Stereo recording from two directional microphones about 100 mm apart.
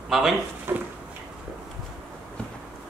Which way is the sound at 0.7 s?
25° right (ahead or behind).